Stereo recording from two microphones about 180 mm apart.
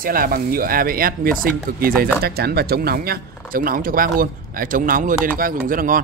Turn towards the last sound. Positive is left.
turn(degrees=-50)  # may be behind; listen again after turning